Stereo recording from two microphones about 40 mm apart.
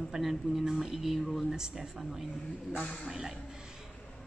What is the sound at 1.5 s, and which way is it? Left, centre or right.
A woman's voice, centre.